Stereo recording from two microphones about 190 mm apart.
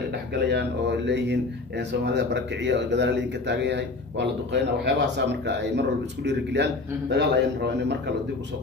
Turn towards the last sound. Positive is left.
turn(degrees=-65)  # may be behind; listen again after turning